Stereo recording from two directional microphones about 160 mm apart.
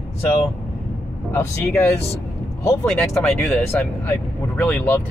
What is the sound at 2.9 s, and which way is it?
Speech, 5° left (ahead or behind).